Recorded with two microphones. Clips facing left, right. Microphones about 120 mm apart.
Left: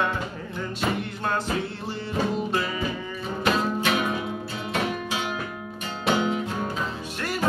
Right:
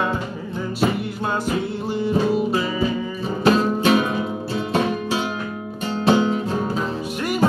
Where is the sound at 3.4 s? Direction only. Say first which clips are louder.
Right 7 dB; 35° right (ahead or behind).